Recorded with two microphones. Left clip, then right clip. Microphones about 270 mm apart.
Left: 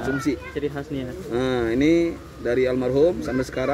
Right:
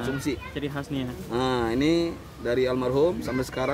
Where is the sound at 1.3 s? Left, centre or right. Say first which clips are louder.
Left 3 dB; centre.